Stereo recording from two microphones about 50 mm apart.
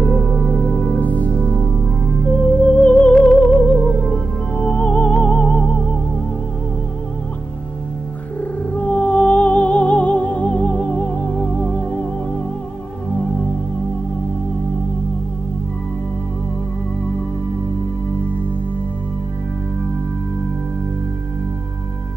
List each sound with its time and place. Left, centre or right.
0.0 s music: centre
1.0 s music: left
2.6 s music: left
8.7 s music: left